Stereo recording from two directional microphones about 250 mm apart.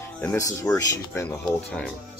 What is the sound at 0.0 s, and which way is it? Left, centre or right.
Music, centre.